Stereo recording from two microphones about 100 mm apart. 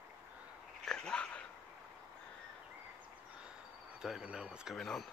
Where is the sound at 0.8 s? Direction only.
5° left (ahead or behind).